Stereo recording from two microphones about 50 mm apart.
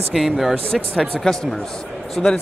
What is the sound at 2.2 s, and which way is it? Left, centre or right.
Speech, centre.